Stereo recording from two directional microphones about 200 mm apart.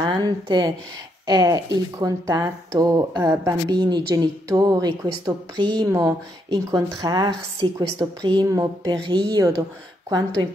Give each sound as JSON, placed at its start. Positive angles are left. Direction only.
{"t": 0.0, "sound": "a woman's voice", "side_deg": -20}